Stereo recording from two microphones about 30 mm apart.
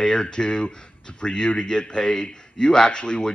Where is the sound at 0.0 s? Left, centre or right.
Left.